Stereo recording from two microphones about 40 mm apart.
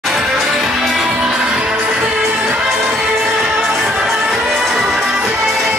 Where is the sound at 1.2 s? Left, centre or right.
Centre.